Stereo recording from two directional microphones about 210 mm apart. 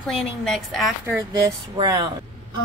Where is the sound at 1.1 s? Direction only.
15° right (ahead or behind).